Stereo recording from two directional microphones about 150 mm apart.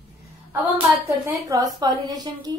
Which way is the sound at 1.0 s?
20° right (ahead or behind).